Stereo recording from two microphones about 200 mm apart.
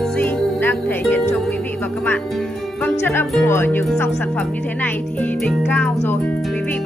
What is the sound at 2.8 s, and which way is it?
Speech, 10° left (ahead or behind).